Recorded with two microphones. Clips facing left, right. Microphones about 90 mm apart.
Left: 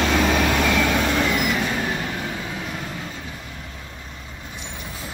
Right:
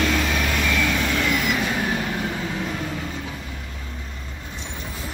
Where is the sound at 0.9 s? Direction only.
40° left (ahead or behind).